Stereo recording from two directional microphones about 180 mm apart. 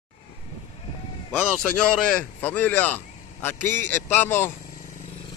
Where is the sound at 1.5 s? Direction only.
5° left (ahead or behind).